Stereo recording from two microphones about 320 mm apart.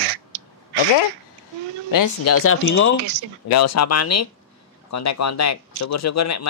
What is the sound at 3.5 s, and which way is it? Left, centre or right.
Speech, left.